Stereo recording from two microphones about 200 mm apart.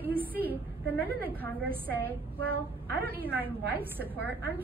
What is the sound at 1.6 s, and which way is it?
Speech, 10° right (ahead or behind).